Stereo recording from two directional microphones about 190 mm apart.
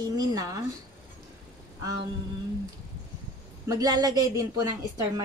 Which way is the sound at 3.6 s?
20° right (ahead or behind).